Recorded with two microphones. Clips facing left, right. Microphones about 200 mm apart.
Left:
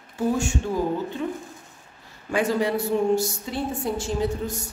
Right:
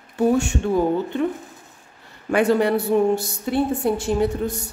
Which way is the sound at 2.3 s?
65° right (ahead or behind).